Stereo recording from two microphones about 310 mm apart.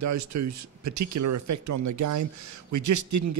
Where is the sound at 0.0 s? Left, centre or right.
Right.